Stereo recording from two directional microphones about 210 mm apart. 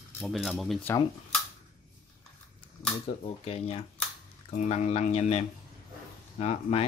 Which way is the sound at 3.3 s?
30° left (ahead or behind).